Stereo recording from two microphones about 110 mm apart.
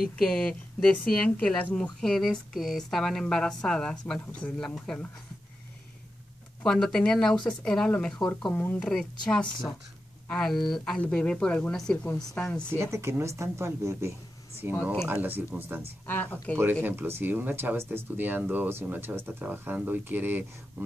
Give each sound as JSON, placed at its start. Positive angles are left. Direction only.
{"t": 0.2, "sound": "a woman's voice", "side_deg": 5}
{"t": 6.6, "sound": "a woman's voice", "side_deg": 5}
{"t": 12.6, "sound": "speech", "side_deg": -25}
{"t": 14.6, "sound": "speech", "side_deg": -15}
{"t": 16.1, "sound": "a woman's voice", "side_deg": 15}
{"t": 16.8, "sound": "speech", "side_deg": -20}